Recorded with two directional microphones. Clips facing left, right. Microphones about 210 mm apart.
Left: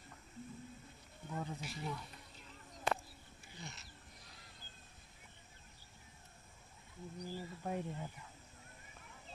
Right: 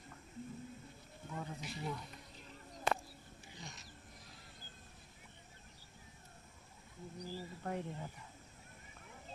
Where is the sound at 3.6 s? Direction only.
15° right (ahead or behind).